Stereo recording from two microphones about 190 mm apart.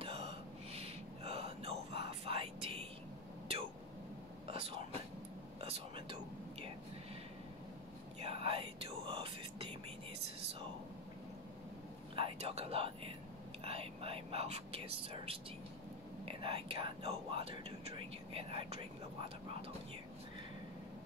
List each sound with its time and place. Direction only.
0.0 s a sound: 30° right (ahead or behind)
4.5 s whispering: 30° right (ahead or behind)
8.2 s whispering: 30° right (ahead or behind)
12.2 s whispering: 30° right (ahead or behind)